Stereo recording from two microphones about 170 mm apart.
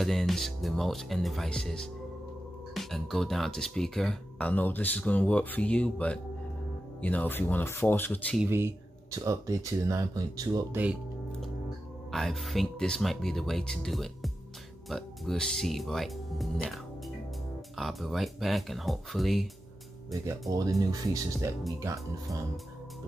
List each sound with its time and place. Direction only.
0.0 s speech: centre (ahead or behind)
8.5 s speech: 15° right (ahead or behind)
12.1 s speech: centre (ahead or behind)
20.8 s speech: 20° right (ahead or behind)